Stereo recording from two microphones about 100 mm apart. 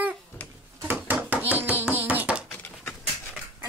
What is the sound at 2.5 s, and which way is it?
Dog, 20° left (ahead or behind).